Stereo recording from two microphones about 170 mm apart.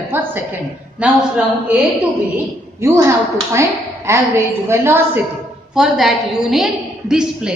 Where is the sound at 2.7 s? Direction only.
15° right (ahead or behind).